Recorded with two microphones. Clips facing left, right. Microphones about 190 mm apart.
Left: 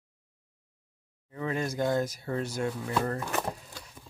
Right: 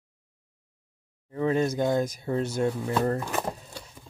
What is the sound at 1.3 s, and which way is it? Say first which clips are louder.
Speech: right 7 dB; 30° right (ahead or behind).